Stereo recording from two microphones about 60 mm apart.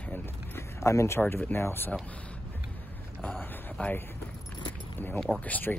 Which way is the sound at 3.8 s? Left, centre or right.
Left.